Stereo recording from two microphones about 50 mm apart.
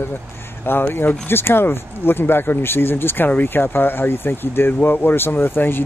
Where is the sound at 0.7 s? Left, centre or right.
Left.